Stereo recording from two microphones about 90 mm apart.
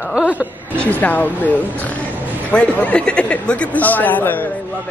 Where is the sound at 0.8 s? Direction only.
15° left (ahead or behind).